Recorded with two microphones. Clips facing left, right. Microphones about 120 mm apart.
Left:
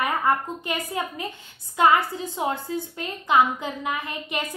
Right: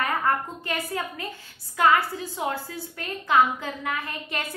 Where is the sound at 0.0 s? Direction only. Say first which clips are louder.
Left 2 dB; 15° left (ahead or behind).